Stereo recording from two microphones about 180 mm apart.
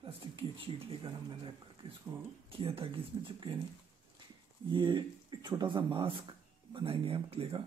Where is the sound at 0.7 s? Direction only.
30° right (ahead or behind).